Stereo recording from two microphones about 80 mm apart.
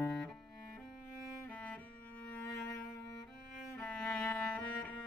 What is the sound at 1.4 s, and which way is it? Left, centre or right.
Music, centre.